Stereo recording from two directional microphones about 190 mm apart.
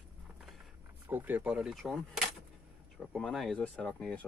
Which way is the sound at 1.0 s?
10° right (ahead or behind).